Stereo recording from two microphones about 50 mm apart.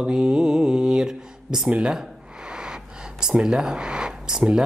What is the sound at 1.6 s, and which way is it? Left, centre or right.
Speech, right.